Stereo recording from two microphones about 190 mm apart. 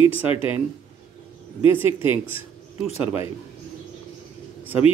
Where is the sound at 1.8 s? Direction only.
10° right (ahead or behind).